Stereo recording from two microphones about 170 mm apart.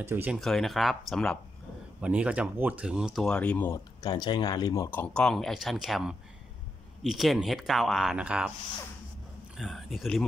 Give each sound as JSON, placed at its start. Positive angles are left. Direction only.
{"t": 0.0, "sound": "speech", "side_deg": -10}
{"t": 0.4, "sound": "speech", "side_deg": 0}
{"t": 2.0, "sound": "speech", "side_deg": -5}
{"t": 3.7, "sound": "speech", "side_deg": 25}
{"t": 5.0, "sound": "speech", "side_deg": 5}
{"t": 9.6, "sound": "speech", "side_deg": 0}